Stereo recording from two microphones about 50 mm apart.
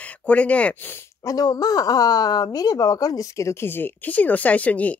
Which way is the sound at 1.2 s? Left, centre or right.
Left.